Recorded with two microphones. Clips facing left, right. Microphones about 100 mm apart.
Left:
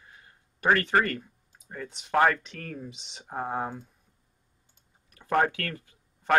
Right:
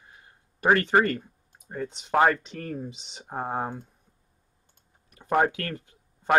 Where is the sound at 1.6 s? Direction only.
25° right (ahead or behind).